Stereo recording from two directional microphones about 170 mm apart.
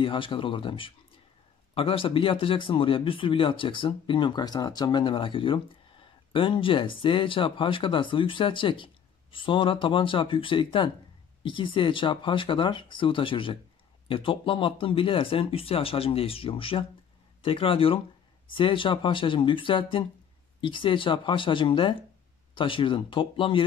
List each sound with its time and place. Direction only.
0.0 s speech: 30° left (ahead or behind)